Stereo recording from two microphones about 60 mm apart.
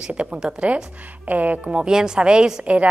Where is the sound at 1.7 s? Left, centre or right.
Centre.